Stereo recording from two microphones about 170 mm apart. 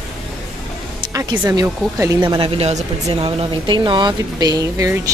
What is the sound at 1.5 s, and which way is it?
Speech, 20° right (ahead or behind).